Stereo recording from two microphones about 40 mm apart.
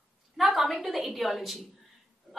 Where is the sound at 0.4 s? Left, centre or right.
Centre.